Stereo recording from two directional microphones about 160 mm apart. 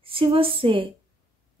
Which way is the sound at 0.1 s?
35° right (ahead or behind).